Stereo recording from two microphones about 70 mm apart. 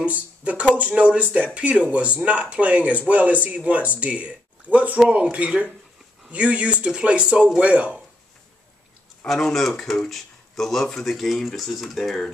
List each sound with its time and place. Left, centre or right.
0.0 s speech: centre
9.2 s speech: centre